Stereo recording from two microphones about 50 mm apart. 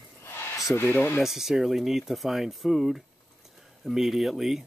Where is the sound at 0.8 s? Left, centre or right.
Left.